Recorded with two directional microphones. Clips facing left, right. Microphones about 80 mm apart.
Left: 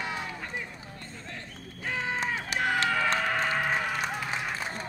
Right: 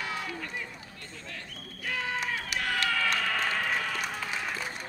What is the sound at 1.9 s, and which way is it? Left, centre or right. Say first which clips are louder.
Music: left 2 dB; left.